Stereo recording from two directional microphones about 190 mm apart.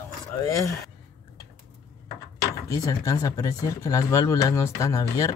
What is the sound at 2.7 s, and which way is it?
Speech, 20° left (ahead or behind).